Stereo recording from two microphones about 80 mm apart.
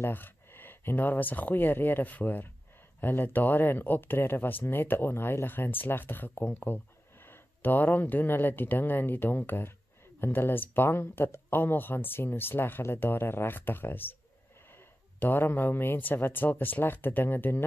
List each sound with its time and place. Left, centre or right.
0.0 s speech: left